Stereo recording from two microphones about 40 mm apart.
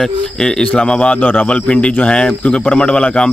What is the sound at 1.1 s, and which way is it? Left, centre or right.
Speech, left.